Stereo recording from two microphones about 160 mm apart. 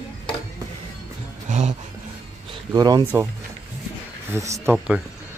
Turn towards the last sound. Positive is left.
turn(degrees=-20)  # may be behind; listen again after turning